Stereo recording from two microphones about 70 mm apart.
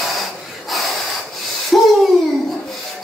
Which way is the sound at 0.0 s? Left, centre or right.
Centre.